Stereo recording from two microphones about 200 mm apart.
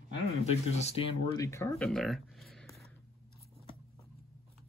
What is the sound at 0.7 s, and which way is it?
Speech, 35° left (ahead or behind).